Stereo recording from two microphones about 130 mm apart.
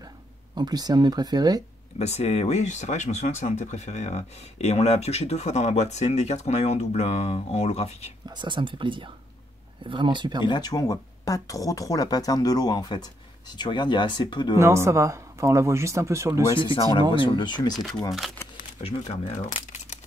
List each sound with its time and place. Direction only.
0.6 s speech: 30° right (ahead or behind)
2.0 s speech: 55° left (ahead or behind)
8.3 s speech: 35° right (ahead or behind)
10.4 s speech: 35° left (ahead or behind)
14.6 s speech: 20° right (ahead or behind)
16.5 s speech: 40° left (ahead or behind)
18.8 s speech: 50° left (ahead or behind)